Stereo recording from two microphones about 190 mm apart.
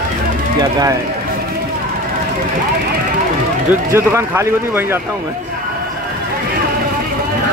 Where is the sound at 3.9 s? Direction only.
15° right (ahead or behind).